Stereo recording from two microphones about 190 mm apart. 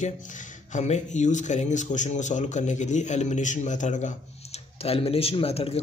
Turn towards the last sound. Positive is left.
turn(degrees=30)  # may be behind; listen again after turning